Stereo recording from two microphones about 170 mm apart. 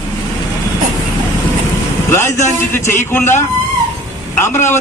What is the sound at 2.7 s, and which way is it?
Speech, 15° left (ahead or behind).